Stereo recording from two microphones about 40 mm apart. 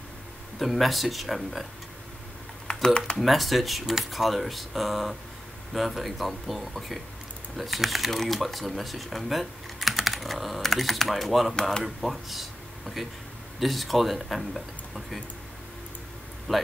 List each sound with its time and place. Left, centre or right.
0.6 s speech: centre
2.7 s typing: centre
3.2 s speech: centre